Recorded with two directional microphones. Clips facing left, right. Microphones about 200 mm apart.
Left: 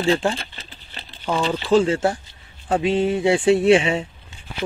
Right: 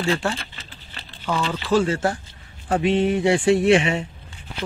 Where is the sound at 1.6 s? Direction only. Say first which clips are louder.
Left 3 dB; 30° left (ahead or behind).